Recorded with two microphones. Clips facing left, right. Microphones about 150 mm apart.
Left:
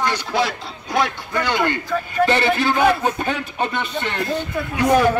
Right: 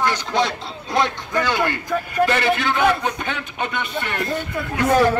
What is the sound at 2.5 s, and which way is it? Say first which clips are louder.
Speech: left 2 dB; 35° left (ahead or behind).